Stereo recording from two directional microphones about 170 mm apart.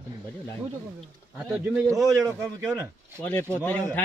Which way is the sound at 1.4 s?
5° right (ahead or behind).